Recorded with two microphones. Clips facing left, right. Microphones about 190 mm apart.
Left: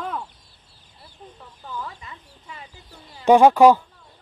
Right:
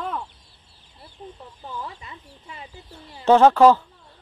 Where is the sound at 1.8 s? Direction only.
25° right (ahead or behind).